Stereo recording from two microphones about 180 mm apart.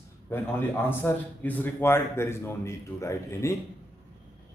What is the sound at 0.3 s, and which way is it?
A man's voice, 10° left (ahead or behind).